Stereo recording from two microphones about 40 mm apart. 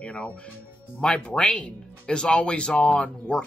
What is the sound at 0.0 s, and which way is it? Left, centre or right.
Music, left.